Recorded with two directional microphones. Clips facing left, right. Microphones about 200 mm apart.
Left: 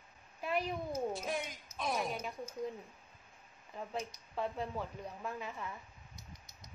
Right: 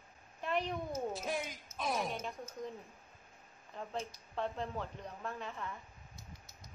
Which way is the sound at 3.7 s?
5° left (ahead or behind).